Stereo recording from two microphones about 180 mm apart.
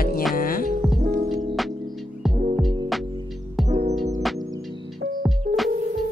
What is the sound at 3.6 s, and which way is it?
Music, 40° right (ahead or behind).